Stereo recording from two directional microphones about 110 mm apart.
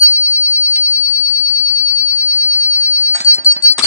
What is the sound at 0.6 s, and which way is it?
Sine wave, 25° left (ahead or behind).